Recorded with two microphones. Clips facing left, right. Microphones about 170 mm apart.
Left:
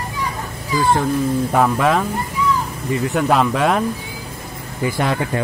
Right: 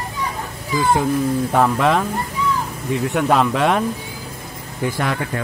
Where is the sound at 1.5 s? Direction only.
Centre (ahead or behind).